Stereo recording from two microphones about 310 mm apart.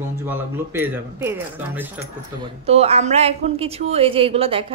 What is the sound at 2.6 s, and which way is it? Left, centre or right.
Speech, centre.